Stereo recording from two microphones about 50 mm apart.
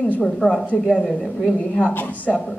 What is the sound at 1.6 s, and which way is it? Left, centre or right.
Speech, left.